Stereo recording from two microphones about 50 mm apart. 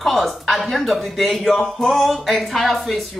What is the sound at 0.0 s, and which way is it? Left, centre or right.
Speech, centre.